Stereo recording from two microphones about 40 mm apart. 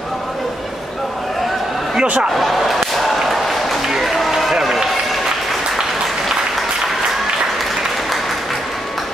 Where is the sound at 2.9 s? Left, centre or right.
Centre.